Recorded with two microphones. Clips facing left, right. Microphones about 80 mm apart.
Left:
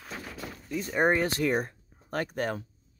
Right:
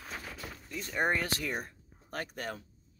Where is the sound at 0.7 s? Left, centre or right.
Centre.